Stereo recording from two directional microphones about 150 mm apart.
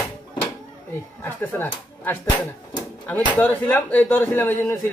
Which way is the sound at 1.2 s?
15° left (ahead or behind).